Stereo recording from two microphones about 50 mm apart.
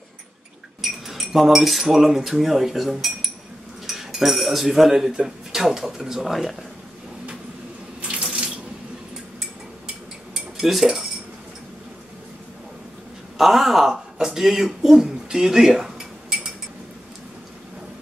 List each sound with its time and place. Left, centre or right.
1.0 s speech: centre
8.2 s sink: centre
10.3 s cutlery: centre
13.4 s speech: centre